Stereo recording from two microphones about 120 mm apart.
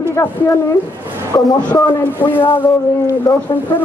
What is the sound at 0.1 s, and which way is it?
A man's voice, 20° left (ahead or behind).